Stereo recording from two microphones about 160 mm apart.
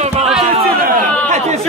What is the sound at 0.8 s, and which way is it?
Chatter, 50° right (ahead or behind).